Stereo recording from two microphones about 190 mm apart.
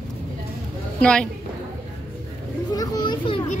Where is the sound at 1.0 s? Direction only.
5° left (ahead or behind).